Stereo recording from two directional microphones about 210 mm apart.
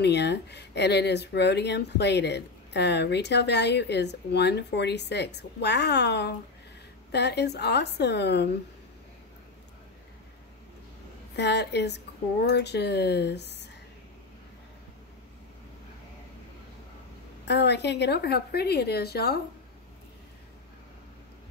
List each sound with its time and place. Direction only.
0.0 s speech: 55° left (ahead or behind)
11.3 s speech: 55° left (ahead or behind)
17.5 s speech: 55° left (ahead or behind)